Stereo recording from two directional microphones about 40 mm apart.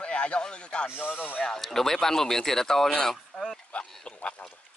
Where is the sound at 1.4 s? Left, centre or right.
Centre.